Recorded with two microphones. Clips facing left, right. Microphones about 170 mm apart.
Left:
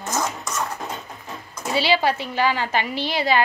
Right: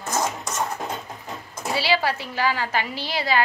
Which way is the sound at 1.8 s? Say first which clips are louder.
Left 3 dB; 20° left (ahead or behind).